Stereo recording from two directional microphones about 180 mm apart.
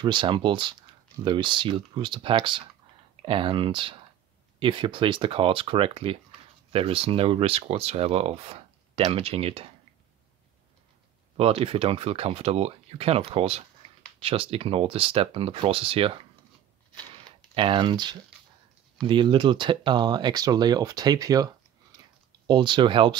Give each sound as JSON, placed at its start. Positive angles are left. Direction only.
{"t": 0.0, "sound": "speech", "side_deg": -25}
{"t": 11.3, "sound": "speech", "side_deg": -30}
{"t": 17.1, "sound": "a sound", "side_deg": -30}
{"t": 19.0, "sound": "speech", "side_deg": -25}